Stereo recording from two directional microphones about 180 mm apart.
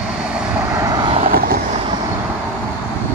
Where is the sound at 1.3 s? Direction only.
55° right (ahead or behind).